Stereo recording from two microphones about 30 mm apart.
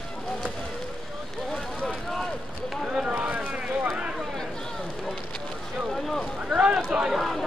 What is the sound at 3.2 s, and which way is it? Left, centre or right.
Vehicle, right.